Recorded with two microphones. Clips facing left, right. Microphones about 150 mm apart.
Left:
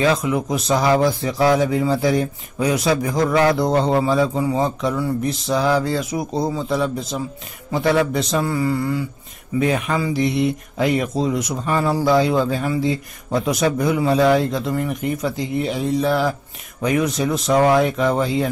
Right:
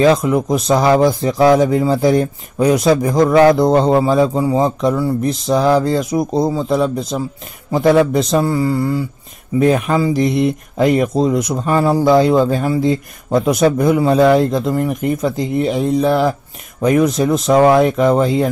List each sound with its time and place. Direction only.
0.0 s a man's voice: 40° right (ahead or behind)